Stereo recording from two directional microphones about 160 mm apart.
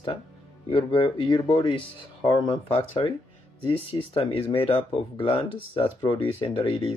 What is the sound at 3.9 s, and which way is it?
Speech, 25° left (ahead or behind).